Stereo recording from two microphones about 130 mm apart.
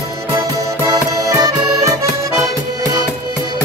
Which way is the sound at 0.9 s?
30° right (ahead or behind).